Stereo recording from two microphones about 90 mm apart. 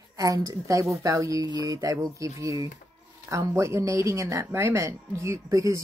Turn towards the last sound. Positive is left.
turn(degrees=-35)  # may be behind; listen again after turning